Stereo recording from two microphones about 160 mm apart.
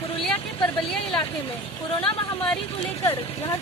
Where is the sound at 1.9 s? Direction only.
35° left (ahead or behind).